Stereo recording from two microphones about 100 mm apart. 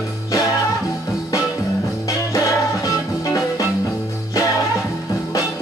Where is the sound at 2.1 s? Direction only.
35° left (ahead or behind).